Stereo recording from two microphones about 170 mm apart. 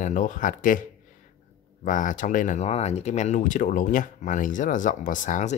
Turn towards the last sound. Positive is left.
turn(degrees=50)  # may be behind; listen again after turning